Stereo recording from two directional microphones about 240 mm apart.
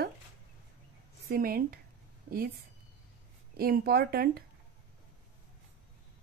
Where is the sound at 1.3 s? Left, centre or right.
Right.